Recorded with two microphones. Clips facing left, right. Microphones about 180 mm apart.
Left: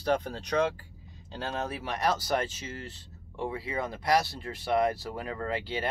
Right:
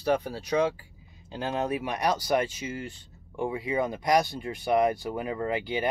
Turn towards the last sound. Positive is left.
turn(degrees=-15)  # may be behind; listen again after turning